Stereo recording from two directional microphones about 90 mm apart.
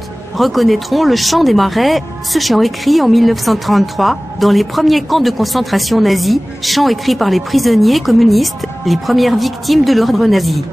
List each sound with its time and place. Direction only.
0.4 s speech: centre (ahead or behind)